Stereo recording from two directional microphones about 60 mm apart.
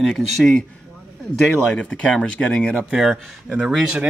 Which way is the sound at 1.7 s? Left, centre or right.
Left.